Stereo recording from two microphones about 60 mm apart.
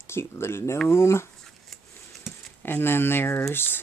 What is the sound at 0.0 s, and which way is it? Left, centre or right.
Speech, left.